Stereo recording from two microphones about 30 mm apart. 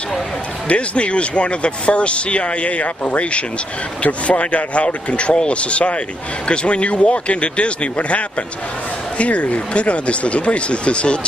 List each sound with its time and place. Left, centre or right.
0.7 s speech: left
9.2 s speech: left